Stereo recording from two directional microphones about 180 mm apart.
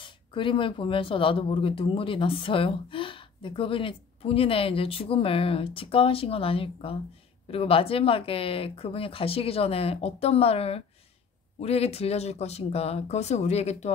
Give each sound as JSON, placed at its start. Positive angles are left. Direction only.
{"t": 0.3, "sound": "speech", "side_deg": 30}